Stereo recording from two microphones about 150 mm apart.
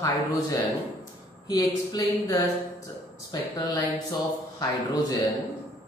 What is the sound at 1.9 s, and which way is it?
Speech, 25° left (ahead or behind).